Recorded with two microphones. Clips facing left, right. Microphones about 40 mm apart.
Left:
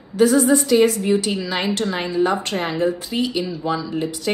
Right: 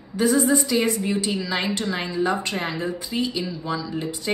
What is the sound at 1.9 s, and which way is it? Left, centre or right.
Speech, left.